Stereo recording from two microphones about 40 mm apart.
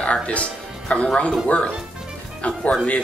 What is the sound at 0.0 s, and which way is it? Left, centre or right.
Music, left.